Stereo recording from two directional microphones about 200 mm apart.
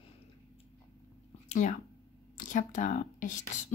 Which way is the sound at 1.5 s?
40° left (ahead or behind).